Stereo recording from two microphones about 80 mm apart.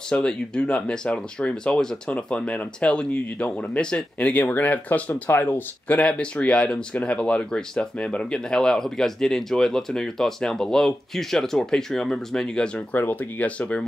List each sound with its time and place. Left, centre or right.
0.1 s speech: centre
12.9 s speech: left